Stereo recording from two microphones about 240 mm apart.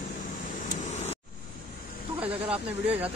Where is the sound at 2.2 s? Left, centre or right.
Right.